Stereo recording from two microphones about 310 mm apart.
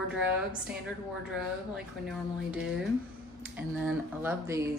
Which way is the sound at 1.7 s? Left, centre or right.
Centre.